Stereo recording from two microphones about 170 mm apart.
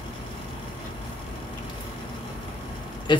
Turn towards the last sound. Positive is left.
turn(degrees=25)  # may be behind; listen again after turning